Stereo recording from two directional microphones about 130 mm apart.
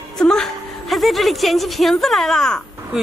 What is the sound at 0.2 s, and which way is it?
A woman's voice, 5° left (ahead or behind).